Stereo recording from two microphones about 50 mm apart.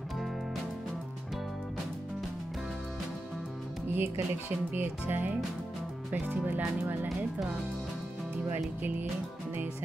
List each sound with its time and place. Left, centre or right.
3.9 s speech: right